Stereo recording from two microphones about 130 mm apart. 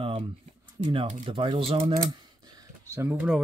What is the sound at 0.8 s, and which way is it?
Speech, 45° right (ahead or behind).